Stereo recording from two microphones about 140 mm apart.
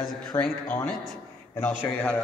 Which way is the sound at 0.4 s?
15° left (ahead or behind).